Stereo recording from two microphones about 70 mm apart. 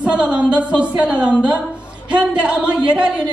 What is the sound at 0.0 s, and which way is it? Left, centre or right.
A woman's voice, centre.